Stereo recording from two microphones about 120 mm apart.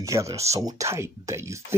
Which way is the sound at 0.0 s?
25° right (ahead or behind).